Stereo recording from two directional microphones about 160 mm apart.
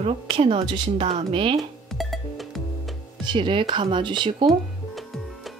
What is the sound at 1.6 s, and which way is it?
Music, centre (ahead or behind).